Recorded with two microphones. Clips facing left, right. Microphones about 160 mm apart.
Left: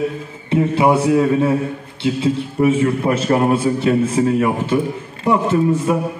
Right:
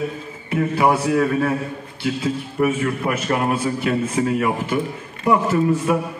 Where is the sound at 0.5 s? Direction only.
25° left (ahead or behind).